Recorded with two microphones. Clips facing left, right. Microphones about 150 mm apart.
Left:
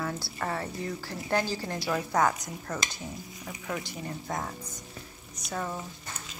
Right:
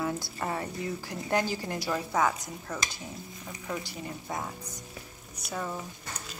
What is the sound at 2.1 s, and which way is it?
Speech, 5° right (ahead or behind).